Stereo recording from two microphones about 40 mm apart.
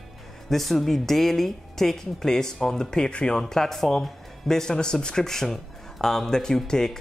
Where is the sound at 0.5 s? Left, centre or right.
Centre; by 3.4 s left.